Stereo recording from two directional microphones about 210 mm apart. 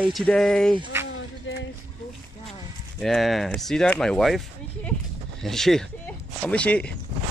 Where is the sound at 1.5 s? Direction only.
60° left (ahead or behind).